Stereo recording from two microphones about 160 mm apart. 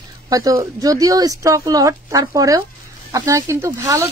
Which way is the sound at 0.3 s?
20° right (ahead or behind).